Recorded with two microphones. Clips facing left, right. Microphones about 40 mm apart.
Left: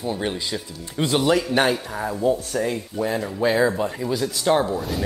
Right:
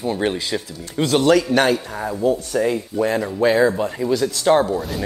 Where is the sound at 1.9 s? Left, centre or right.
Centre.